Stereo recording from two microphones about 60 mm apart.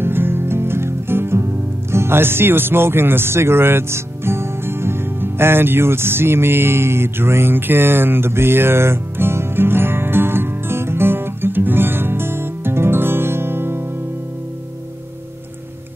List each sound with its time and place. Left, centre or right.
0.0 s music: right